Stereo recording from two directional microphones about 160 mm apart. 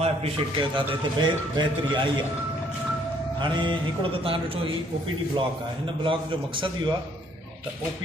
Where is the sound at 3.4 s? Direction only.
30° right (ahead or behind).